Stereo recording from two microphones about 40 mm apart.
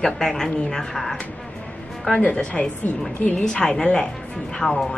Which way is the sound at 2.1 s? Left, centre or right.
Left.